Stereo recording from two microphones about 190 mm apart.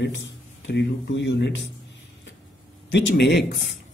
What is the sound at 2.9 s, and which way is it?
Speech, 65° left (ahead or behind).